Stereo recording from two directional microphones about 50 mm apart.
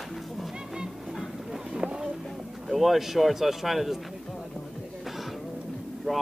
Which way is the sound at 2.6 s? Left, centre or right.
Centre.